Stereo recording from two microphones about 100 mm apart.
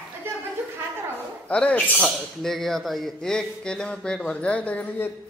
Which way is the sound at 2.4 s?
5° left (ahead or behind).